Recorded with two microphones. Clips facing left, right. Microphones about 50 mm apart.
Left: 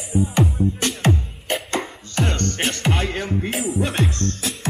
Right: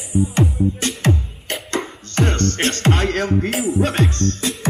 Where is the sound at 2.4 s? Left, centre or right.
Right.